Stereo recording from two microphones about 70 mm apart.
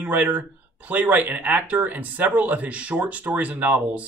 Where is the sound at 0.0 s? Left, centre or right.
Right.